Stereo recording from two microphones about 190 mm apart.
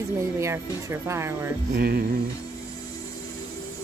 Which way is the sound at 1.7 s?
50° right (ahead or behind).